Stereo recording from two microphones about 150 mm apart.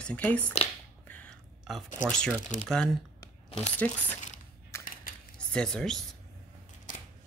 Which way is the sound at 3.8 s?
10° left (ahead or behind).